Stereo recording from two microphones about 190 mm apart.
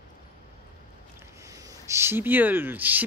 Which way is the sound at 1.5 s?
15° right (ahead or behind).